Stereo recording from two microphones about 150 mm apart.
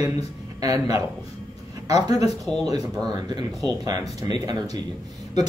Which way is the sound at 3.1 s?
30° right (ahead or behind).